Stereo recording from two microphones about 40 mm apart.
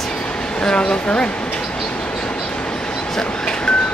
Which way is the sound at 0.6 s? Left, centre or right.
Left.